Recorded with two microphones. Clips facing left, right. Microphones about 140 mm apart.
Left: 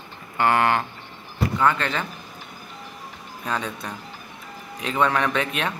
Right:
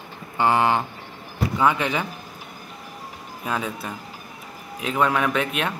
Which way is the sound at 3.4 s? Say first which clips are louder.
Right 1 dB; 5° right (ahead or behind).